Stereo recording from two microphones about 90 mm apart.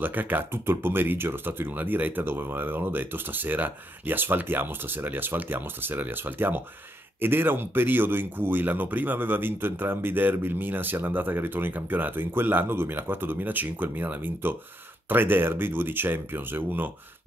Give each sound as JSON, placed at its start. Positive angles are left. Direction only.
{"t": 0.0, "sound": "speech", "side_deg": -20}